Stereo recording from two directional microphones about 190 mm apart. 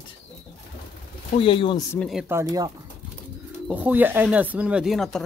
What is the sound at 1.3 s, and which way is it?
Speech, 25° left (ahead or behind).